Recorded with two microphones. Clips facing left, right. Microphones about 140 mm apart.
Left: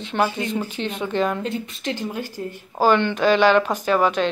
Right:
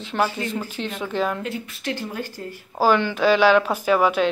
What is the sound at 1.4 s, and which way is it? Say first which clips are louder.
Speech: left 2 dB; 25° left (ahead or behind).